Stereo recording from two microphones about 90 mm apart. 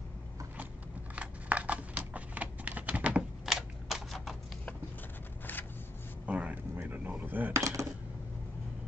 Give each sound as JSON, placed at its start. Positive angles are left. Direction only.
{"t": 1.1, "sound": "typing", "side_deg": -15}
{"t": 6.2, "sound": "a sound", "side_deg": -15}
{"t": 7.5, "sound": "dishes", "side_deg": -35}